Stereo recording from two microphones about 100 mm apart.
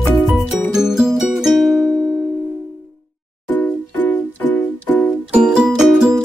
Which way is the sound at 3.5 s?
15° left (ahead or behind).